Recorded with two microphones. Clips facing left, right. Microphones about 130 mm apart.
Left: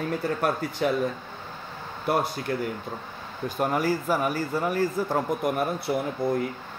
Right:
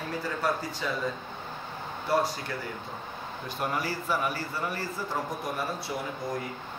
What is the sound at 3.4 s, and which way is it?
Speech, 45° left (ahead or behind).